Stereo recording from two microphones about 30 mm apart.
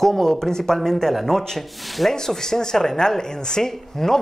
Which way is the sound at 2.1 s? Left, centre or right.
Centre.